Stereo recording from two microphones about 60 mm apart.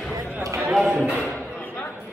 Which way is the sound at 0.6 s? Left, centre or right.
Centre.